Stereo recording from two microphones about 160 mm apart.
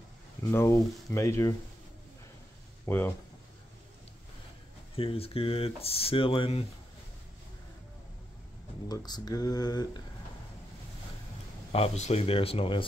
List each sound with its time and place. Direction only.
0.5 s speech: 15° left (ahead or behind)
2.9 s speech: 15° left (ahead or behind)
4.9 s speech: 35° left (ahead or behind)
8.8 s speech: 25° left (ahead or behind)
11.7 s speech: 40° left (ahead or behind)